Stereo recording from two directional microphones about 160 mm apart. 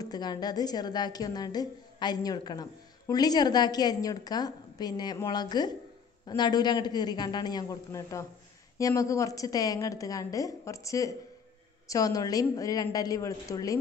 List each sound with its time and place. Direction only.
0.0 s a woman's voice: 25° left (ahead or behind)